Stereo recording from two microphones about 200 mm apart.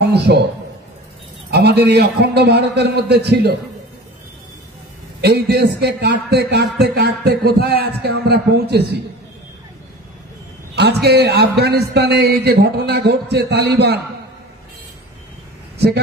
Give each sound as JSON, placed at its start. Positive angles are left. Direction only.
{"t": 0.0, "sound": "a sound", "side_deg": -55}
{"t": 1.5, "sound": "a man's voice", "side_deg": -55}
{"t": 5.2, "sound": "a man's voice", "side_deg": -55}
{"t": 10.8, "sound": "a man's voice", "side_deg": -55}